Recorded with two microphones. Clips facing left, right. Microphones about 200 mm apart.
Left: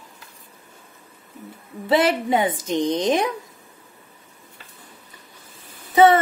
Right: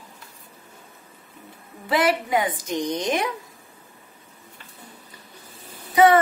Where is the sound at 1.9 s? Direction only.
25° left (ahead or behind).